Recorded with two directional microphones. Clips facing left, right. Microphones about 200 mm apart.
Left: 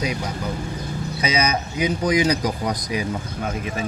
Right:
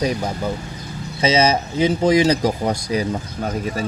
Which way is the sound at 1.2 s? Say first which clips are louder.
Right 6 dB; 25° right (ahead or behind).